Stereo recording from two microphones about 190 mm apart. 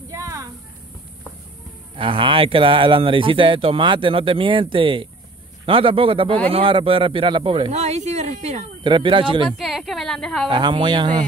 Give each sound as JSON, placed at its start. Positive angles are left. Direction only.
{"t": 0.1, "sound": "a sound", "side_deg": -20}
{"t": 2.0, "sound": "speech", "side_deg": -25}
{"t": 9.5, "sound": "a woman's voice", "side_deg": 0}
{"t": 10.5, "sound": "speech", "side_deg": -25}